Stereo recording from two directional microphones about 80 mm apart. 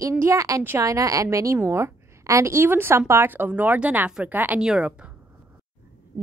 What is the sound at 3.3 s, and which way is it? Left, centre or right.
Speech, right.